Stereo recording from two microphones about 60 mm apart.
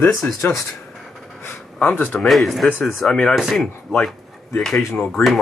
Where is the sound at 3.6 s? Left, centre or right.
Centre.